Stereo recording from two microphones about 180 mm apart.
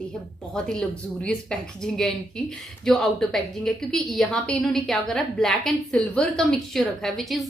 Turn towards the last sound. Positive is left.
turn(degrees=0)  # may be behind; listen again after turning